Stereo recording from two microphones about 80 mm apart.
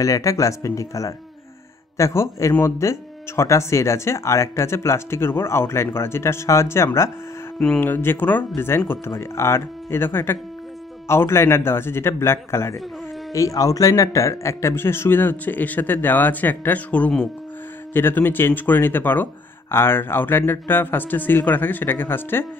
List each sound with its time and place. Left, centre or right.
0.0 s speech: left
7.5 s speech: centre
7.8 s speech: left